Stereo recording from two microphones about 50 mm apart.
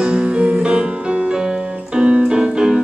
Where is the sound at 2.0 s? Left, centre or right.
Centre.